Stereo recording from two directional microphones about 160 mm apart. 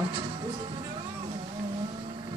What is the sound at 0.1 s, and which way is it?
Music, 35° right (ahead or behind).